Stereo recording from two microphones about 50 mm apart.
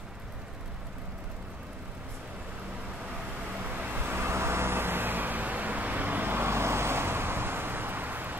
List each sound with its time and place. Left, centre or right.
3.5 s vehicle: right